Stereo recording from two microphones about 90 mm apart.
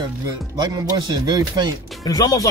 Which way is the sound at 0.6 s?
45° right (ahead or behind).